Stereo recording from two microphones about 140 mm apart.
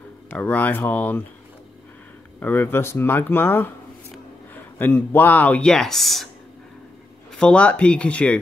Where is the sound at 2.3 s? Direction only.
15° left (ahead or behind).